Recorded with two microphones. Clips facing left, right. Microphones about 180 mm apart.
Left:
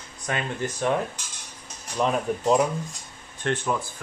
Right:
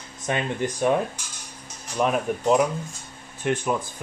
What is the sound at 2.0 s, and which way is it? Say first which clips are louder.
Speech: right 1 dB; 5° right (ahead or behind).